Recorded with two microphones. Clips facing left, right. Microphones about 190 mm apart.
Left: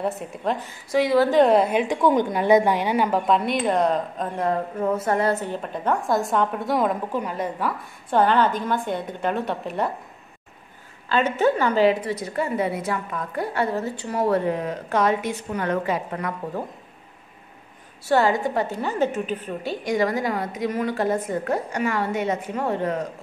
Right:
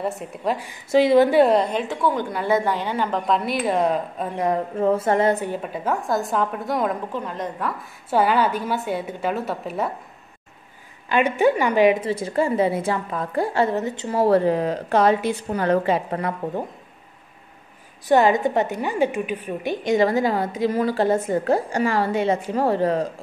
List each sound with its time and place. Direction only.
0.0 s a woman's voice: 5° right (ahead or behind)
0.9 s a woman's voice: 25° right (ahead or behind)
1.3 s a woman's voice: centre (ahead or behind)
4.7 s a woman's voice: 30° right (ahead or behind); by 9.9 s centre (ahead or behind)
11.1 s a woman's voice: 15° right (ahead or behind); by 16.6 s 30° right (ahead or behind)
18.0 s a woman's voice: 20° right (ahead or behind)